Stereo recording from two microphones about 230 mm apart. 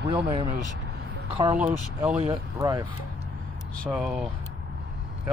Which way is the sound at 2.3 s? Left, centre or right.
Centre.